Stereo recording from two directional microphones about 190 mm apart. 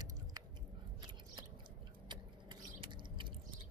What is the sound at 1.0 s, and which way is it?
Scissors, 20° right (ahead or behind).